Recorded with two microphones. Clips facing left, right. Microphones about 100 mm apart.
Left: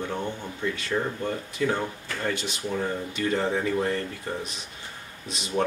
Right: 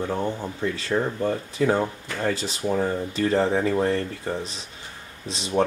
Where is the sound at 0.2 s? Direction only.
35° right (ahead or behind).